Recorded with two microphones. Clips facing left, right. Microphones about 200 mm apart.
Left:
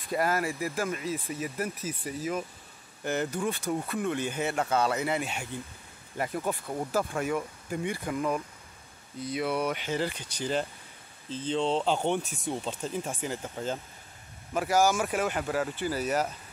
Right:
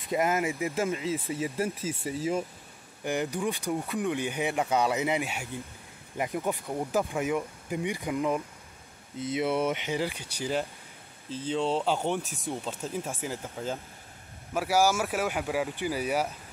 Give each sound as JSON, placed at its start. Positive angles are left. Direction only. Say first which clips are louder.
{"t": 0.1, "sound": "speech", "louder": "right 1 dB", "side_deg": -20}
{"t": 3.0, "sound": "speech", "louder": "even", "side_deg": -15}